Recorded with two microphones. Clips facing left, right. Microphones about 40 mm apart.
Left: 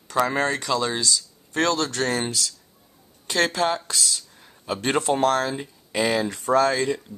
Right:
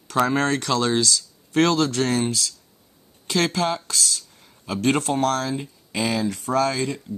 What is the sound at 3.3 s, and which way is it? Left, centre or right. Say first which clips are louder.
Speech: even; centre.